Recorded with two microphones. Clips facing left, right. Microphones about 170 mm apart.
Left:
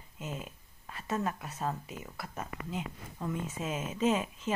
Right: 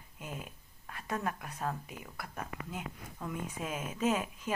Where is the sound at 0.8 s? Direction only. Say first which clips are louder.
Left 3 dB; 5° left (ahead or behind).